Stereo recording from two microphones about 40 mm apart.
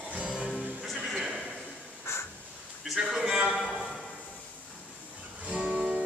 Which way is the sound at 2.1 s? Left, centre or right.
Left.